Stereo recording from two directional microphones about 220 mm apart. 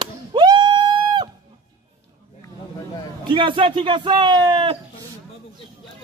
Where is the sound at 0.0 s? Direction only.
20° right (ahead or behind).